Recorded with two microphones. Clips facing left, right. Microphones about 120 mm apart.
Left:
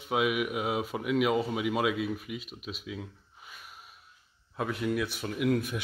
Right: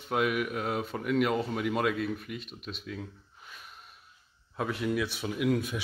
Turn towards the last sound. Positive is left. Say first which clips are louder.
# even
turn(degrees=0)  # may be behind; listen again after turning